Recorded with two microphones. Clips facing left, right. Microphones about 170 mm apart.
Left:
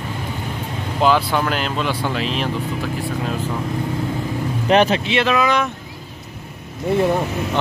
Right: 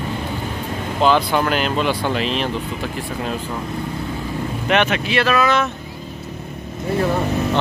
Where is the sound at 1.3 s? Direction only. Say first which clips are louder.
Right 2 dB; centre (ahead or behind).